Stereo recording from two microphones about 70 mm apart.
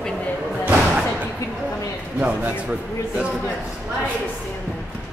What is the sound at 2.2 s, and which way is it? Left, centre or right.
Speech, right.